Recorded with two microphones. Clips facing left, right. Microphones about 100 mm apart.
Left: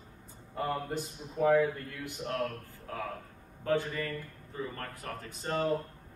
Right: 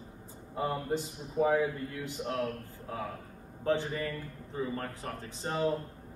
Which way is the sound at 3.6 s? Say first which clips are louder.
Even; 25° right (ahead or behind).